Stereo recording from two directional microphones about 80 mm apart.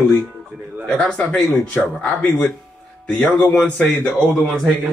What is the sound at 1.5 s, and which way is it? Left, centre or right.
Speech, left.